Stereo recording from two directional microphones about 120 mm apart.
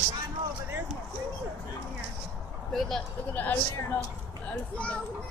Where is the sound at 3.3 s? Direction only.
15° left (ahead or behind).